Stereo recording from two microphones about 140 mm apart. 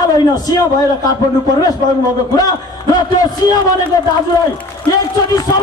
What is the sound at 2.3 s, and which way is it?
A man's voice, 30° left (ahead or behind).